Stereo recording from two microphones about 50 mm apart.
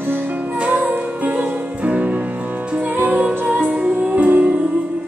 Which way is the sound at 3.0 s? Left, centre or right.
Right.